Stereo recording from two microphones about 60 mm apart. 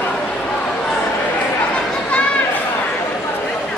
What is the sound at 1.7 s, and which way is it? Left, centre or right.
Chatter, centre.